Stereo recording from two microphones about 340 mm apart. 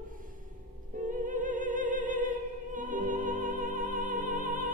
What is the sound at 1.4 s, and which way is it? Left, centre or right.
Opera, right.